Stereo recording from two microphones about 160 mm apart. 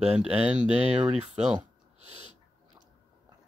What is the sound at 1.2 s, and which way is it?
Speech, 40° right (ahead or behind).